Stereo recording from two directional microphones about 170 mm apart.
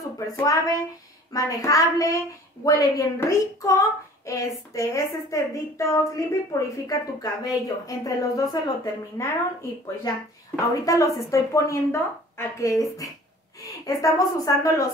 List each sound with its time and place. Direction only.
0.0 s a woman's voice: 20° left (ahead or behind)